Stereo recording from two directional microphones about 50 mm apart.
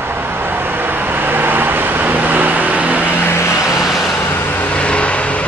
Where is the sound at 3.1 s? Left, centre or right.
Left.